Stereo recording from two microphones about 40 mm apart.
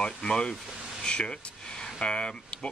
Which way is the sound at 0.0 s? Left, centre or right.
Centre.